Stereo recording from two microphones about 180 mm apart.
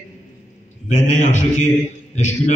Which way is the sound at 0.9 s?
40° left (ahead or behind).